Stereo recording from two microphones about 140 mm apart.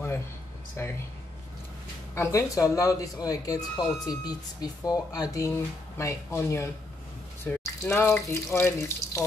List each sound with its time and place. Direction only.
0.8 s speech: 15° left (ahead or behind)
2.1 s speech: 20° left (ahead or behind)